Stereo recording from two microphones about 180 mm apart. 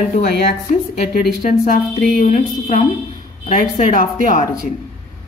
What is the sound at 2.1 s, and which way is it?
A woman's voice, 45° left (ahead or behind).